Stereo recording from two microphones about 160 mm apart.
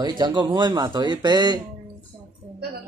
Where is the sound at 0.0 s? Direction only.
30° right (ahead or behind).